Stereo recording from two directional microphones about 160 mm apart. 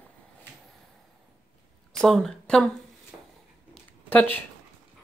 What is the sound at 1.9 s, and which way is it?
Speech, 5° left (ahead or behind).